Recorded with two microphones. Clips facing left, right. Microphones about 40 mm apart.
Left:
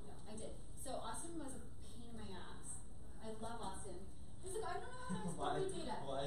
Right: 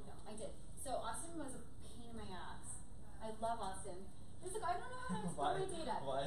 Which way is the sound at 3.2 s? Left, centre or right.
Centre.